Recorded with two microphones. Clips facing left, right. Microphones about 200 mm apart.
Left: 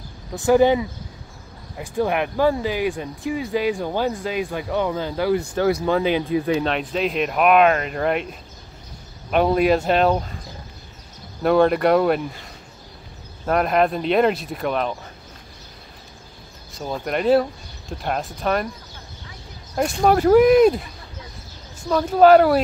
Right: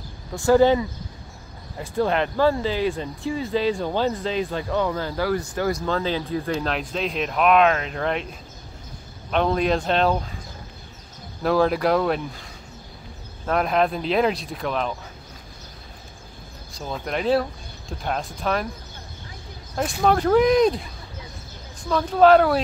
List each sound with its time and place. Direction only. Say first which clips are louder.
0.3 s speech: left 1 dB; 15° left (ahead or behind)
6.6 s speech: left 4 dB; centre (ahead or behind)
9.3 s speech: left 4 dB; 5° left (ahead or behind)
11.4 s speech: left 3 dB; centre (ahead or behind)
13.5 s speech: left 2 dB; 5° left (ahead or behind)
16.7 s speech: left 3 dB; 5° left (ahead or behind)
20.1 s speech: left 4 dB; 5° left (ahead or behind)
21.8 s speech: left 2 dB; 5° left (ahead or behind)